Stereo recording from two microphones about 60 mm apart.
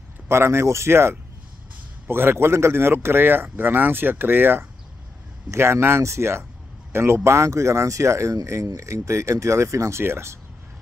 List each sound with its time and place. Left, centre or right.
0.3 s speech: right